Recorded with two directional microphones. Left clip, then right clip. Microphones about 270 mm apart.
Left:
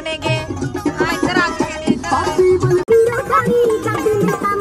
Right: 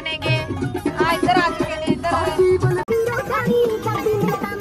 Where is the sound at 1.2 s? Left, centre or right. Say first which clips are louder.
Left 1 dB; centre.